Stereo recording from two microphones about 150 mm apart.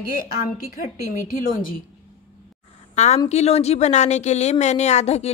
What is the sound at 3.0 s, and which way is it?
A woman's voice, 50° left (ahead or behind).